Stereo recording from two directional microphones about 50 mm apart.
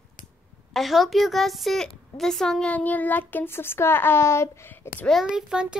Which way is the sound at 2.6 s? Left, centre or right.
Left.